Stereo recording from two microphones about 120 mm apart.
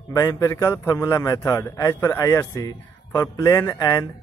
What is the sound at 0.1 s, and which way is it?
A man's voice, 25° left (ahead or behind).